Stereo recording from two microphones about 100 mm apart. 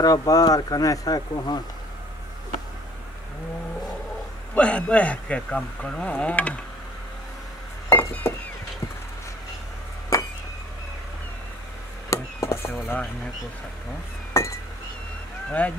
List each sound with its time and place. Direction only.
0.0 s speech: 40° left (ahead or behind)
4.6 s speech: 10° left (ahead or behind)
7.9 s a sound: 25° left (ahead or behind)
10.1 s a sound: 30° left (ahead or behind)
12.1 s chop: 30° left (ahead or behind)
14.3 s chink: 30° left (ahead or behind)
15.6 s speech: 15° left (ahead or behind)